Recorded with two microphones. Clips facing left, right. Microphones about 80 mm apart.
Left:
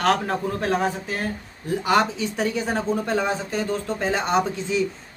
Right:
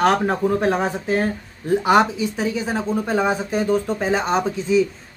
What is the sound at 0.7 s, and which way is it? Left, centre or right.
Speech, right.